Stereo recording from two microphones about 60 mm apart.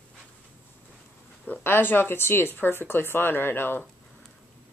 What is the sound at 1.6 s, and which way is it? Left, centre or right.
Speech, left.